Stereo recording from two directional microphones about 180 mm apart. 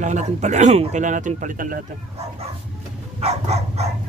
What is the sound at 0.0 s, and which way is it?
Speech, 40° right (ahead or behind).